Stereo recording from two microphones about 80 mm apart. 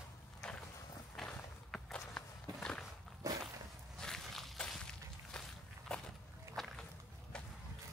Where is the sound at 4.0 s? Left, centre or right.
Centre.